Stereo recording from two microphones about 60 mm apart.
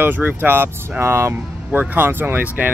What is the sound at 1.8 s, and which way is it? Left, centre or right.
Speech, right.